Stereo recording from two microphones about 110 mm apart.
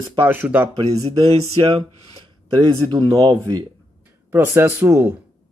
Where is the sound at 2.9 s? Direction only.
35° right (ahead or behind).